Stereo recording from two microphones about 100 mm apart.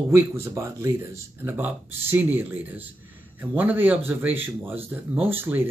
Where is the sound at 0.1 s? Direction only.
25° right (ahead or behind).